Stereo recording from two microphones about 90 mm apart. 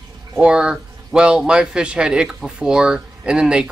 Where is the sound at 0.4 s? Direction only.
10° right (ahead or behind).